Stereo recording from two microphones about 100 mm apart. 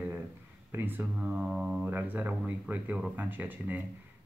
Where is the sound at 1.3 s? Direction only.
10° right (ahead or behind).